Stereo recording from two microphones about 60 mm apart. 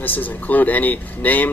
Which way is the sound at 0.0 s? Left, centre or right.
Left.